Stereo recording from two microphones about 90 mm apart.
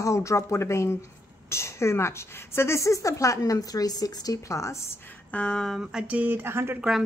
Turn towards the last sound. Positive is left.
turn(degrees=-25)  # may be behind; listen again after turning